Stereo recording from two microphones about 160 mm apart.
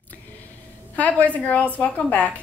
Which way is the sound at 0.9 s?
10° left (ahead or behind).